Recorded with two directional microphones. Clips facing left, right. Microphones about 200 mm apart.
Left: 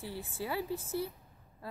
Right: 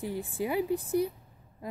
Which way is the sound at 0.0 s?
15° right (ahead or behind).